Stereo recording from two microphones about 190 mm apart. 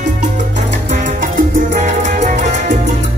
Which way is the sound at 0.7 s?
45° right (ahead or behind).